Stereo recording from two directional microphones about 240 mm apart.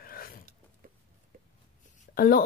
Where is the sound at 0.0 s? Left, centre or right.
Left.